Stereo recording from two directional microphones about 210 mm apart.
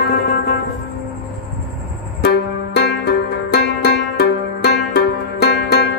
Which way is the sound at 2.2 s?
50° left (ahead or behind).